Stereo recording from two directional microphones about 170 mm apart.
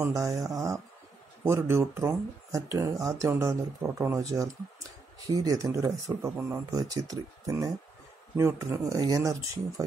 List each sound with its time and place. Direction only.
0.0 s speech: 20° right (ahead or behind)